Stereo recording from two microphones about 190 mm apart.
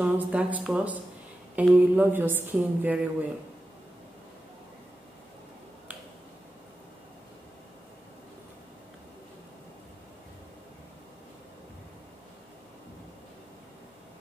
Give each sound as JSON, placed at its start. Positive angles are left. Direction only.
{"t": 0.0, "sound": "a woman's voice", "side_deg": -5}